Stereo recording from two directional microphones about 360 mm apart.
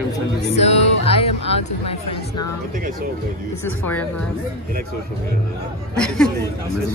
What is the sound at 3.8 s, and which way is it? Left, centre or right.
Speech, centre.